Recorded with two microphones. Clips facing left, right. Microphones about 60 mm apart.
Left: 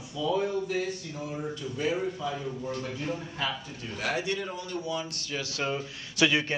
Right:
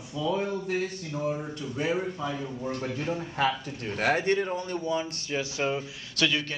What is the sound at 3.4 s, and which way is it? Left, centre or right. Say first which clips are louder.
Speech: right 6 dB; right.